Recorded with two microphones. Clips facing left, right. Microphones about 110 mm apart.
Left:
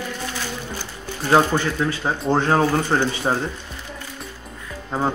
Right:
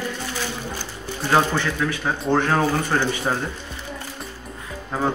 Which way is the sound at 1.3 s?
15° left (ahead or behind).